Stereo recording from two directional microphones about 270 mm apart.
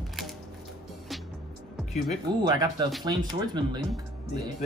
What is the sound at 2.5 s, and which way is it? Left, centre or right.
Speech, centre.